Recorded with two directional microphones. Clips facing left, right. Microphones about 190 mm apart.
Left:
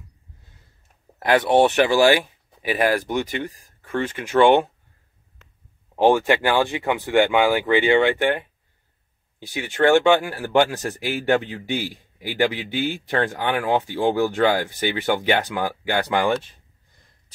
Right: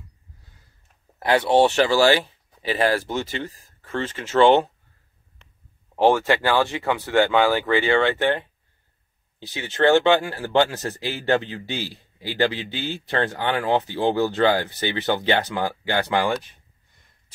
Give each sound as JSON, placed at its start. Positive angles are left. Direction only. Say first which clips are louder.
{"t": 1.4, "sound": "speech", "louder": "even", "side_deg": 20}
{"t": 5.9, "sound": "speech", "louder": "left 1 dB", "side_deg": 15}